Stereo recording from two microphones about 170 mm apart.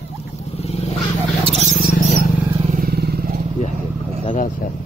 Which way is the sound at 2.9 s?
65° right (ahead or behind).